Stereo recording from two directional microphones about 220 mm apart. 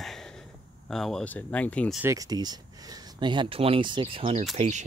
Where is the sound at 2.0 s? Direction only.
15° right (ahead or behind).